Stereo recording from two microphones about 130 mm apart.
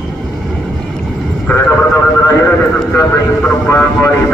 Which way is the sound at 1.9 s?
20° left (ahead or behind).